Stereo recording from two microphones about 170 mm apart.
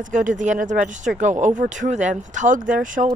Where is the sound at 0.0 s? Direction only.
50° right (ahead or behind).